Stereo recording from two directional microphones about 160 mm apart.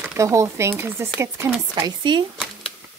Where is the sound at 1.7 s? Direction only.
30° right (ahead or behind).